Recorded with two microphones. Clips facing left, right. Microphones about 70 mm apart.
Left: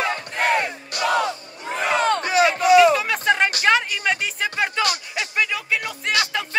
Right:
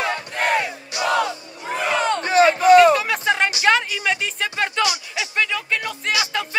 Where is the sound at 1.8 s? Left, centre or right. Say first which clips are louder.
Left 1 dB; left.